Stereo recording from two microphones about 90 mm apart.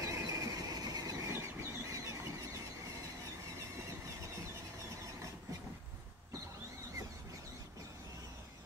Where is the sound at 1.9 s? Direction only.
35° right (ahead or behind).